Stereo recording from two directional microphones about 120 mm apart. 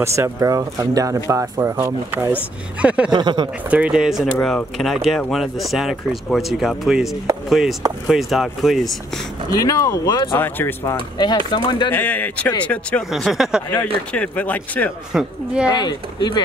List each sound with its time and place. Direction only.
0.0 s speech: 25° right (ahead or behind)
2.8 s speech: 10° right (ahead or behind)
3.1 s speech: 40° right (ahead or behind)
3.7 s speech: 10° right (ahead or behind)
4.3 s speech: 5° left (ahead or behind)
9.6 s speech: 30° left (ahead or behind)
10.3 s speech: 20° left (ahead or behind)
11.1 s speech: 40° left (ahead or behind)
11.9 s speech: 15° left (ahead or behind)
13.1 s speech: centre (ahead or behind)
14.1 s speech: 10° left (ahead or behind)
15.1 s speech: 10° right (ahead or behind)
15.7 s speech: 35° left (ahead or behind)